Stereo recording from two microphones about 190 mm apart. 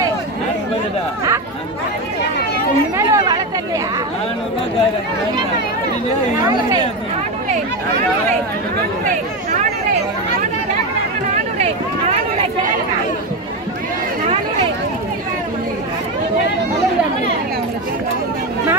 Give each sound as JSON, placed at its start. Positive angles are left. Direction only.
{"t": 3.0, "sound": "chatter", "side_deg": -20}
{"t": 6.4, "sound": "speech", "side_deg": -20}
{"t": 11.5, "sound": "a sound", "side_deg": -35}